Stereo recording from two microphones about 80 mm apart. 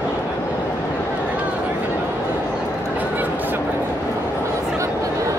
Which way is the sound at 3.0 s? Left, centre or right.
Right.